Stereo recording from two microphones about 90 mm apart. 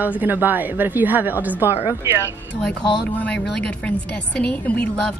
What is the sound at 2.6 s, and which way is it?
Speech, 15° left (ahead or behind).